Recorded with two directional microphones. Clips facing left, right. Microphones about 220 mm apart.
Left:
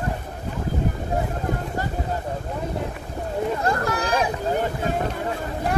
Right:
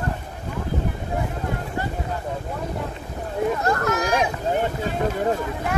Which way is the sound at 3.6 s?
30° left (ahead or behind).